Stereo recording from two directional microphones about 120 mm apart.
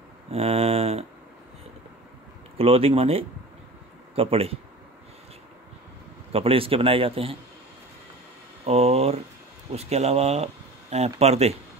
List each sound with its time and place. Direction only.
0.3 s speech: 55° right (ahead or behind)
2.5 s a man's voice: 55° right (ahead or behind)
6.3 s a man's voice: 50° right (ahead or behind)
8.6 s speech: 55° right (ahead or behind)